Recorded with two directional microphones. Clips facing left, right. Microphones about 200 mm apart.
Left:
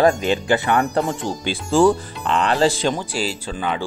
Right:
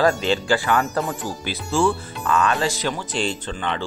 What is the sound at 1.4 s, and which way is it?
Speech, 35° left (ahead or behind).